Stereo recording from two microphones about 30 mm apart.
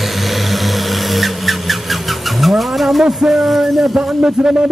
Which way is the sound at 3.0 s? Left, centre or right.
Centre.